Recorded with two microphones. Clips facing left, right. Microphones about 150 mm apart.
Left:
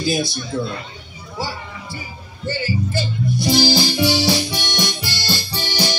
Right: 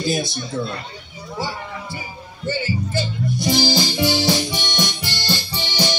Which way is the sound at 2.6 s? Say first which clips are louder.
Left 1 dB; 10° left (ahead or behind).